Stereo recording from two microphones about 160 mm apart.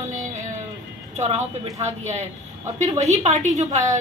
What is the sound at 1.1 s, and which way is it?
A woman's voice, 45° right (ahead or behind).